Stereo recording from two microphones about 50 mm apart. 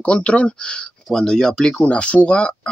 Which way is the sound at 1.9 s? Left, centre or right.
Left.